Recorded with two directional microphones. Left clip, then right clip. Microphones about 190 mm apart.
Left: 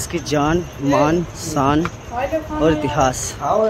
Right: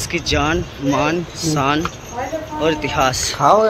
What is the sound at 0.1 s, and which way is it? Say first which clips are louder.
Speech: even; 25° left (ahead or behind).